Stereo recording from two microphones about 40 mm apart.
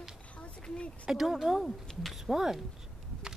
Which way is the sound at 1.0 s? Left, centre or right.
Centre.